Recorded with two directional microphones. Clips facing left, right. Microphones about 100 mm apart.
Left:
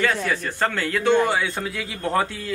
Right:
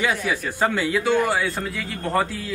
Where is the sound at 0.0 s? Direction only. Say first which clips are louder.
Left 1 dB; 10° right (ahead or behind).